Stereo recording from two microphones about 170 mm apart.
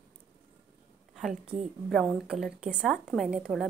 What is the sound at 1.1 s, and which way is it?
A woman's voice, centre (ahead or behind).